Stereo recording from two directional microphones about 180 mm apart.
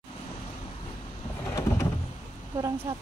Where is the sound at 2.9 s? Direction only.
15° right (ahead or behind).